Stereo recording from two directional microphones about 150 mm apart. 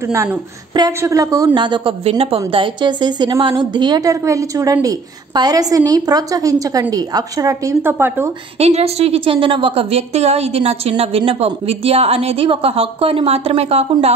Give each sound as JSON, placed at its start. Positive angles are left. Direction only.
{"t": 0.0, "sound": "a woman's voice", "side_deg": -20}
{"t": 8.5, "sound": "a woman's voice", "side_deg": -45}